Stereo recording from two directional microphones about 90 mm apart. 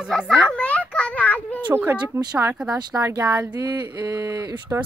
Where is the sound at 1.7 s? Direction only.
25° right (ahead or behind).